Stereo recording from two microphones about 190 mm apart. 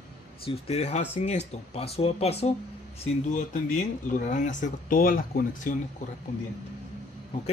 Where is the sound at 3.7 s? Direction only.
40° left (ahead or behind).